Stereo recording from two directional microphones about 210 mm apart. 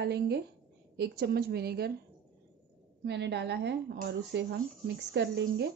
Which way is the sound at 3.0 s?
55° right (ahead or behind).